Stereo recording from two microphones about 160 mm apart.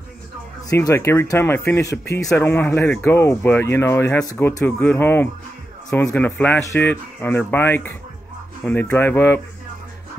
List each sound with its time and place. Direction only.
0.7 s speech: 20° left (ahead or behind)